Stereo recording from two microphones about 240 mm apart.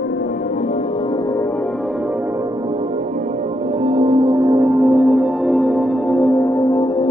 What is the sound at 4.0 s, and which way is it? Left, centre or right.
Ambient music, centre.